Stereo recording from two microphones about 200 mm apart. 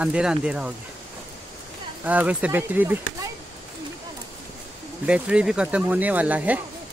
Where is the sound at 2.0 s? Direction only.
5° right (ahead or behind).